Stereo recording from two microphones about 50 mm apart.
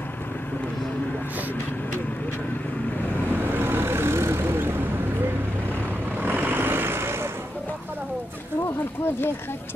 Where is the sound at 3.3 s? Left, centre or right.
Right.